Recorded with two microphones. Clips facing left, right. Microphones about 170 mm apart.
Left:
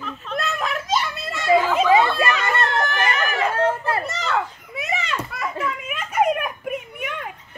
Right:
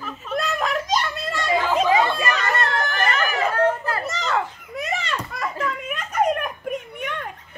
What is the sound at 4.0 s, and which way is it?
Children playing, centre (ahead or behind).